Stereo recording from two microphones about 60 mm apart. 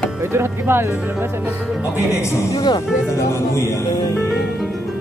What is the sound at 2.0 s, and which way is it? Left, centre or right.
Speech, left.